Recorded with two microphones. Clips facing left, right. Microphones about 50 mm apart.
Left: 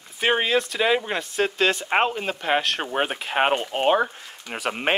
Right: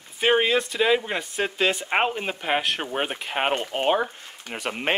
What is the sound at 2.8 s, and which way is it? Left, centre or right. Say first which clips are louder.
Speech: left 2 dB; centre.